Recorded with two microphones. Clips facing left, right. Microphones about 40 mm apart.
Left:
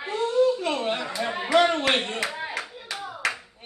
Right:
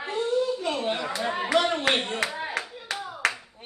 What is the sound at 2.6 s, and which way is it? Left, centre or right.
Clapping, right.